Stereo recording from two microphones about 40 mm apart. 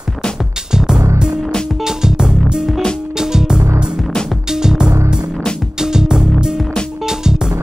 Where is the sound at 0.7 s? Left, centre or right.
Centre.